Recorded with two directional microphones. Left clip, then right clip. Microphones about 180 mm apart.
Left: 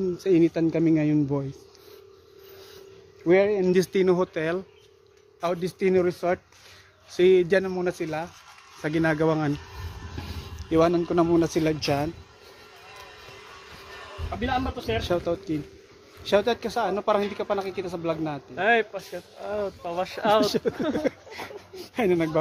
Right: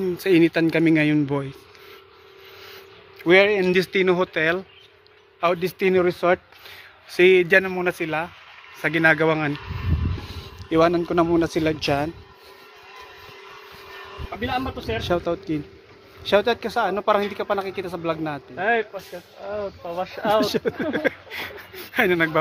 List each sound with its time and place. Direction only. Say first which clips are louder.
0.0 s speech: right 3 dB; centre (ahead or behind)
3.3 s speech: right 4 dB; 10° left (ahead or behind)
3.7 s speech: right 2 dB; 25° left (ahead or behind); by 4.6 s 5° left (ahead or behind)
5.4 s speech: right 5 dB; 15° right (ahead or behind)
7.2 s speech: right 4 dB; centre (ahead or behind)
8.8 s speech: right 6 dB; 10° left (ahead or behind)
10.2 s a sound: right 2 dB; 20° left (ahead or behind)
10.7 s speech: right 3 dB; 5° left (ahead or behind)
14.4 s speech: right 1 dB; 15° left (ahead or behind)
15.0 s speech: right 6 dB; 20° right (ahead or behind); by 18.4 s 5° right (ahead or behind)
18.6 s speech: even; 40° left (ahead or behind)
20.3 s speech: right 3 dB; 10° right (ahead or behind)
21.3 s speech: right 5 dB; 10° left (ahead or behind)